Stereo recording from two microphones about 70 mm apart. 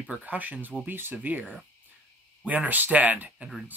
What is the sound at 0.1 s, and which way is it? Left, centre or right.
Speech, right.